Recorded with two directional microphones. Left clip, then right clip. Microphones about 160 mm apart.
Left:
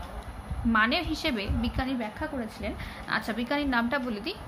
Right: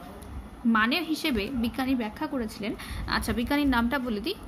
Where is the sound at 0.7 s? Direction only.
30° right (ahead or behind).